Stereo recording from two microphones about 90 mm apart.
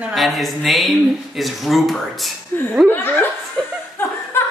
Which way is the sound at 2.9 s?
25° left (ahead or behind).